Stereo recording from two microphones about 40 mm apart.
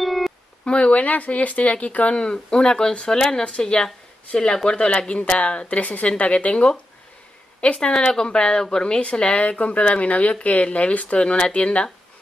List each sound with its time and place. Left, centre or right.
0.0 s a sound: centre
0.7 s speech: left
2.1 s speech: left